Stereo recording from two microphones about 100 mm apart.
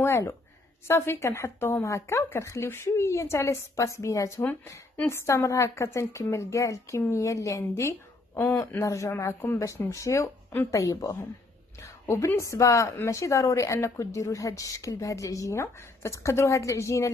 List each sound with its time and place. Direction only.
0.0 s a woman's voice: 25° left (ahead or behind)